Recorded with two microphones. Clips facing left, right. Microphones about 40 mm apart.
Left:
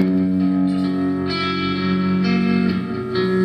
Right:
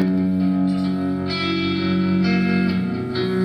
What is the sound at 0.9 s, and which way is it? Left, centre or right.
Music, left.